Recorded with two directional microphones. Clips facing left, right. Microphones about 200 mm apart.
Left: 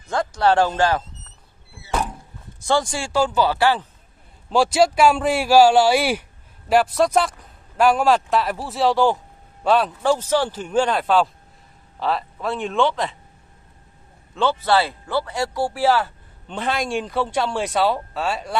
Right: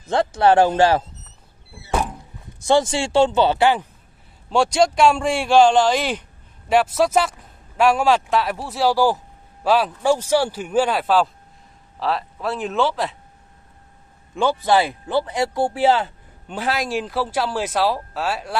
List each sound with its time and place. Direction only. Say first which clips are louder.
0.1 s speech: right 3 dB; 25° right (ahead or behind)
2.6 s speech: right 4 dB; 20° right (ahead or behind)
4.5 s a man's voice: even; centre (ahead or behind)
14.3 s speech: right 1 dB; 10° right (ahead or behind)
16.4 s a man's voice: even; 5° right (ahead or behind)